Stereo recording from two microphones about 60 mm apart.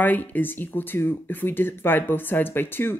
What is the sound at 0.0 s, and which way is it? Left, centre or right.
Speech, left.